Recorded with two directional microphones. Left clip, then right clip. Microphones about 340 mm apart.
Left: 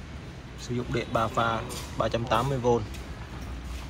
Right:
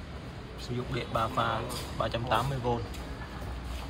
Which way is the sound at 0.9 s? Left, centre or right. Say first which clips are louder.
Left 3 dB; centre.